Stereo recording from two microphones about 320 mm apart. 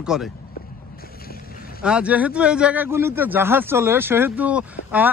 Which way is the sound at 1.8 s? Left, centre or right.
Centre.